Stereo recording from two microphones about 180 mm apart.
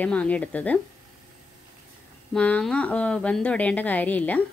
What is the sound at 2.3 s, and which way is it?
A woman's voice, 5° left (ahead or behind).